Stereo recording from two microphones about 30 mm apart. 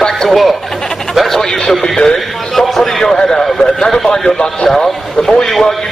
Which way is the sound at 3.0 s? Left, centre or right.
Left.